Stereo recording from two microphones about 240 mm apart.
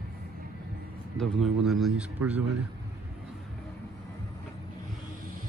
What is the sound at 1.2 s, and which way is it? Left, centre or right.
A man's voice, centre.